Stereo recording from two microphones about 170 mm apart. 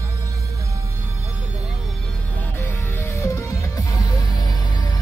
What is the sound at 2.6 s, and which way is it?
Music, 15° left (ahead or behind).